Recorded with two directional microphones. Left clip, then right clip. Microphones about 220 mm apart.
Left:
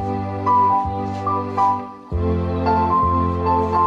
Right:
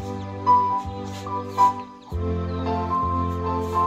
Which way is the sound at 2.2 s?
25° left (ahead or behind).